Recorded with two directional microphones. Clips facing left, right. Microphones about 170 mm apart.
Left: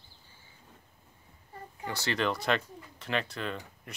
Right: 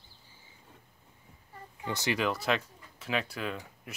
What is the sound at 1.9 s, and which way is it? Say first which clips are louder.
Speech: right 2 dB; 20° right (ahead or behind).